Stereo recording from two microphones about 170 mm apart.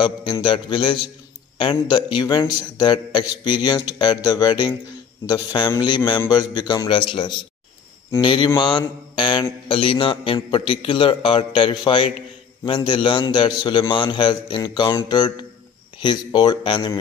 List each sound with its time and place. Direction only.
0.0 s a man's voice: 30° left (ahead or behind)
8.5 s mantra: 25° left (ahead or behind)
12.6 s a man's voice: 30° left (ahead or behind)